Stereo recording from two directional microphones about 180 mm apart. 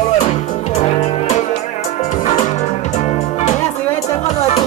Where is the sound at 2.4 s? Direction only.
40° left (ahead or behind).